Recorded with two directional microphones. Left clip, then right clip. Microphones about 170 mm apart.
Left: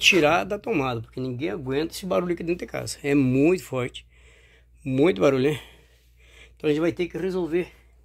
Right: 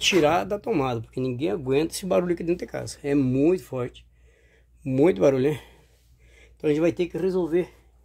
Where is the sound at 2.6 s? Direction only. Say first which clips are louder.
Left 2 dB; centre (ahead or behind).